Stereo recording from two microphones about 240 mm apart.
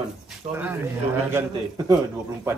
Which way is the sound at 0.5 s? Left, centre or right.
Right.